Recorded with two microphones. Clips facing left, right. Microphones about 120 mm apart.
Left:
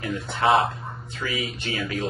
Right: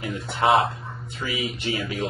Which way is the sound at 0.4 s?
25° right (ahead or behind).